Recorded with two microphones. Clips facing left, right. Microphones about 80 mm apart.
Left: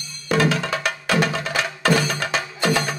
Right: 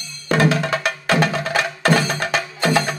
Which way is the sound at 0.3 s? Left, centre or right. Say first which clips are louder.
Right 2 dB; right.